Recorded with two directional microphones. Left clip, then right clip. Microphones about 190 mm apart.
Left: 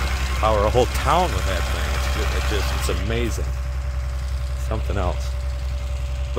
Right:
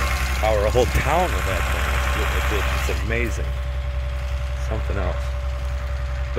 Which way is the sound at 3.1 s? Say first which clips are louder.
Right 3 dB; 15° left (ahead or behind).